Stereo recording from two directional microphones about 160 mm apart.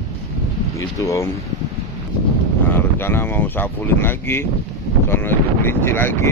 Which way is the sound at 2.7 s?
15° left (ahead or behind).